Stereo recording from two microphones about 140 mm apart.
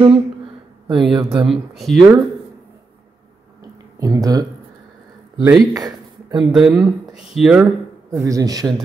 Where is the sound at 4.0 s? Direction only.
25° right (ahead or behind).